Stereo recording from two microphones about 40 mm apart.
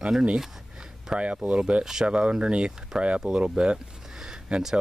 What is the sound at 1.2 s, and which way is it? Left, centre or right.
Speech, right.